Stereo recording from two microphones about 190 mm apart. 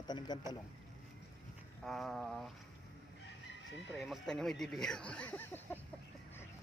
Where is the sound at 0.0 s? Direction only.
20° left (ahead or behind).